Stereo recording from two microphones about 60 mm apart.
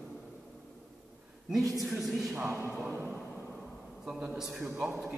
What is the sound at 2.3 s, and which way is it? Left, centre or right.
Speech, right.